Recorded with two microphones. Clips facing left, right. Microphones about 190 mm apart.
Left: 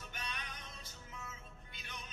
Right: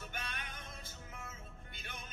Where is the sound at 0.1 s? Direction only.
50° right (ahead or behind).